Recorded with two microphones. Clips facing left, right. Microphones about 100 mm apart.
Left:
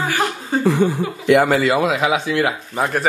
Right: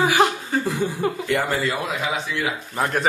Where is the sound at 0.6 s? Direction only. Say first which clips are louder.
Left 7 dB; 70° left (ahead or behind); by 2.3 s 90° left.